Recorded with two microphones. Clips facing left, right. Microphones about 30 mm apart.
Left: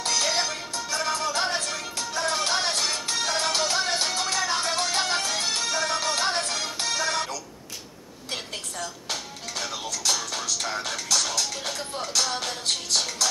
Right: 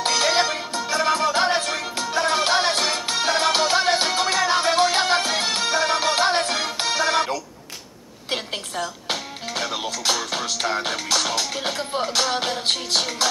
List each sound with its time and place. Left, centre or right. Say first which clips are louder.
0.0 s music: right 6 dB; right
9.1 s music: right 5 dB; right